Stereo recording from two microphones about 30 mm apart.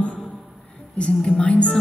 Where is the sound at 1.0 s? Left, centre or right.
Left.